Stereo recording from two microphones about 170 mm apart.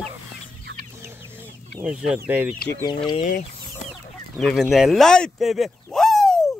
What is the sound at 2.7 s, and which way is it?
Speech, 25° left (ahead or behind).